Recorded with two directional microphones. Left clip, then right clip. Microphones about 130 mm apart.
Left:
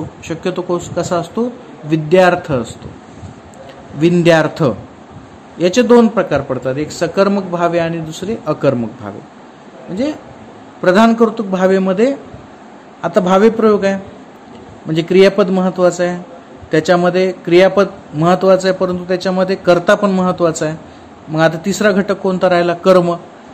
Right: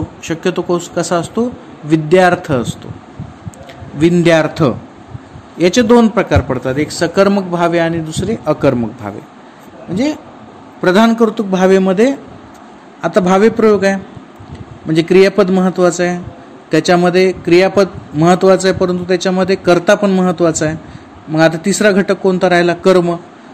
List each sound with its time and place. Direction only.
0.2 s speech: 45° right (ahead or behind)
4.0 s a man's voice: 30° right (ahead or behind)
10.8 s a man's voice: 40° right (ahead or behind); by 23.1 s 25° right (ahead or behind)